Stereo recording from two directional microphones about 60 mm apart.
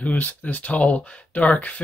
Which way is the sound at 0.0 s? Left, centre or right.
Left.